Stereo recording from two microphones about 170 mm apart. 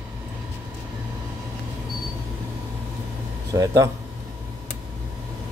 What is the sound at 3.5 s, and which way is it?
Speech, 20° right (ahead or behind).